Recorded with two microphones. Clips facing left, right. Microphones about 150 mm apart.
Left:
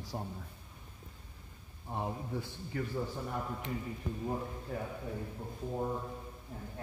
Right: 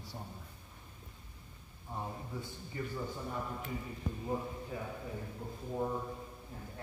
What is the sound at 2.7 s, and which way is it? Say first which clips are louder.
Speech: left 3 dB; 70° left (ahead or behind).